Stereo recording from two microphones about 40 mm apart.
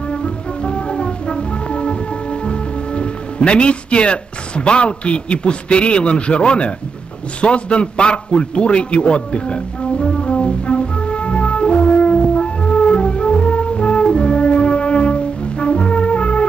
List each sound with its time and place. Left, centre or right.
0.1 s music: left
2.4 s a man's voice: left
10.2 s brass instrument: left